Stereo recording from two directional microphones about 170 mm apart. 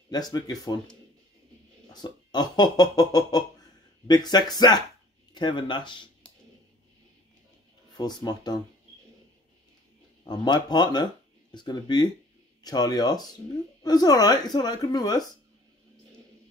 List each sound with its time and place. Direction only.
0.1 s speech: 25° left (ahead or behind)
1.9 s speech: 25° left (ahead or behind)
7.9 s speech: 25° left (ahead or behind)
10.2 s speech: 25° left (ahead or behind)